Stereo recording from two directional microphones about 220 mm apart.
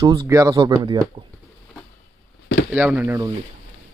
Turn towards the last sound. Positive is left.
turn(degrees=-10)  # may be behind; listen again after turning